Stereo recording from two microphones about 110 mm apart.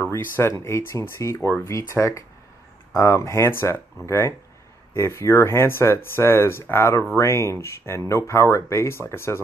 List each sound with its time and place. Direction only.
0.0 s speech: 20° left (ahead or behind)